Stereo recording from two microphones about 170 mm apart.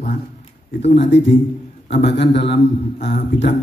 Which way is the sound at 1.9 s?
90° left.